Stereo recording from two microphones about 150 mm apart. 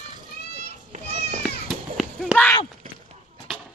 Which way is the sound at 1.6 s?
Centre (ahead or behind).